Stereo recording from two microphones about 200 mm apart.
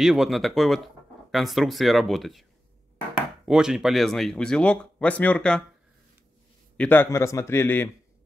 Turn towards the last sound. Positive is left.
turn(degrees=10)  # may be behind; listen again after turning